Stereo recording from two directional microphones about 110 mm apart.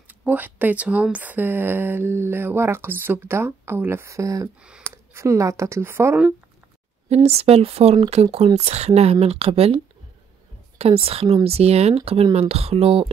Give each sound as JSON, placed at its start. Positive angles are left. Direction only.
{"t": 0.1, "sound": "speech", "side_deg": -15}
{"t": 4.6, "sound": "speech", "side_deg": -10}
{"t": 4.9, "sound": "speech", "side_deg": -25}
{"t": 7.2, "sound": "speech", "side_deg": -65}
{"t": 10.8, "sound": "speech", "side_deg": -60}